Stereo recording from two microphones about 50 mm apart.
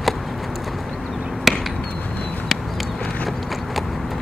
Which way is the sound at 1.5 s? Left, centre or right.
Centre.